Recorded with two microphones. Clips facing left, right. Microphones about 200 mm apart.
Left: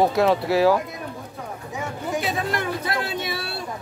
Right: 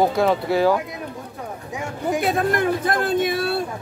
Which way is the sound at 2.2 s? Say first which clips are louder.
Right 8 dB; 55° right (ahead or behind).